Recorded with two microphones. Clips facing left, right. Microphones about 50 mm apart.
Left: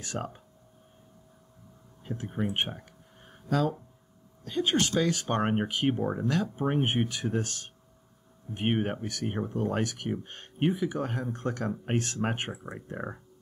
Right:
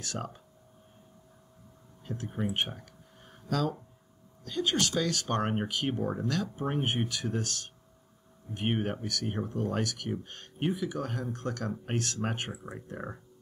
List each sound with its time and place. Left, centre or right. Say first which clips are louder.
0.0 s speech: left 2 dB; centre
2.0 s speech: left 2 dB; centre
2.4 s a sound: left 1 dB; left
4.5 s speech: left 3 dB; left